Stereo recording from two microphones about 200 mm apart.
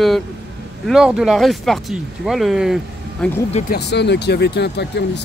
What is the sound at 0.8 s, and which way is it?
Speech, 5° right (ahead or behind).